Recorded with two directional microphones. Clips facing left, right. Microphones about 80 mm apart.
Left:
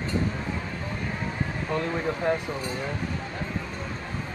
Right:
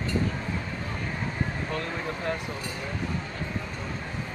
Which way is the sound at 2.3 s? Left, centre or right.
Centre.